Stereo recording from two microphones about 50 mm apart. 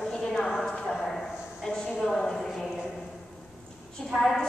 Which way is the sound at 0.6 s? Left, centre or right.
Centre.